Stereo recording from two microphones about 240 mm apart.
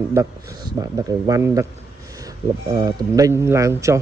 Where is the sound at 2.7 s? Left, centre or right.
Centre.